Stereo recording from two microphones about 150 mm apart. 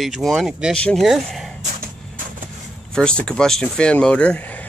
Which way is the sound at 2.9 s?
5° left (ahead or behind).